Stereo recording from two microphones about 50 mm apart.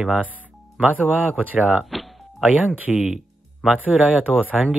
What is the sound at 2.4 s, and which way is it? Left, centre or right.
Speech, centre.